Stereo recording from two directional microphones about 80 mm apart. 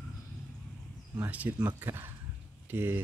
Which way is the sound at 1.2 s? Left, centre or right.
Right.